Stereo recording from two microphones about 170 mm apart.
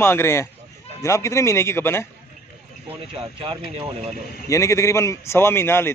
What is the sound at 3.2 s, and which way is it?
Speech, 30° right (ahead or behind).